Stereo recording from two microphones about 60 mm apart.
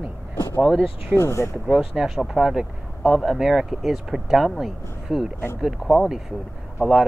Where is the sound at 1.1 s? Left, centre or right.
Left.